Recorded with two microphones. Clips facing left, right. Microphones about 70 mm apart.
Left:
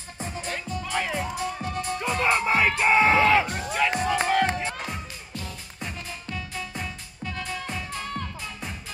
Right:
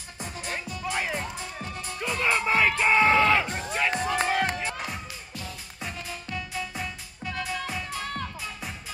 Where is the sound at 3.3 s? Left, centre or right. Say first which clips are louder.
Left 3 dB; centre.